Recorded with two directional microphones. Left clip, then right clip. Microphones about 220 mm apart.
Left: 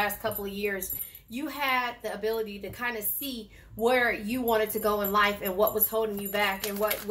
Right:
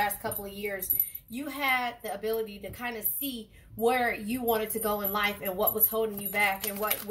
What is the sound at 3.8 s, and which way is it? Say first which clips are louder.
Speech: left 2 dB; 35° left (ahead or behind).